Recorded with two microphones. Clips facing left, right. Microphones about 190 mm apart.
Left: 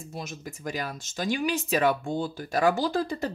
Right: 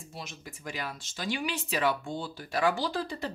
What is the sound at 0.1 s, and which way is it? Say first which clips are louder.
Speech: left 6 dB; 45° left (ahead or behind).